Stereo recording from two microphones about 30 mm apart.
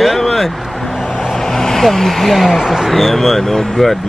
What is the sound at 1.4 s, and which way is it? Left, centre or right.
Vehicle, centre.